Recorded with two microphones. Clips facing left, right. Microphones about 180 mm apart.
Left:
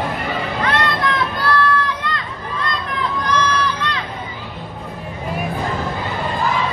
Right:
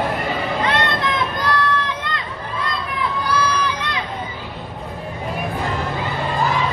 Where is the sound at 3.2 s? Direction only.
10° right (ahead or behind).